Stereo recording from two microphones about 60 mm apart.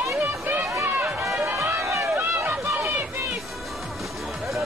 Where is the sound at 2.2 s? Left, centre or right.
Right.